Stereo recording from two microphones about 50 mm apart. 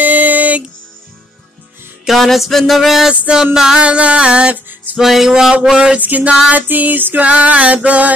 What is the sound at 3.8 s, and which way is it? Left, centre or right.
Music, right.